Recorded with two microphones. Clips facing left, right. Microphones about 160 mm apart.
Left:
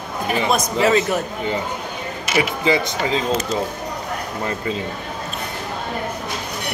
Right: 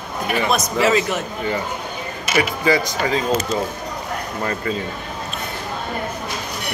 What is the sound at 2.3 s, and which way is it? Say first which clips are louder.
Speech: right 1 dB; 20° left (ahead or behind).